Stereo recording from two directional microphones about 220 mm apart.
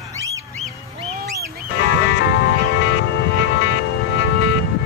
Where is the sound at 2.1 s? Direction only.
55° left (ahead or behind).